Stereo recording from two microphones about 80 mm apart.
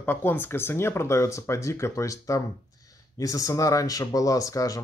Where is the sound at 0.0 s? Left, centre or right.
Left.